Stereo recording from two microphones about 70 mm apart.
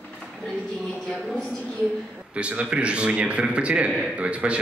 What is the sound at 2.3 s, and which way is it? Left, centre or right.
A man's voice, centre.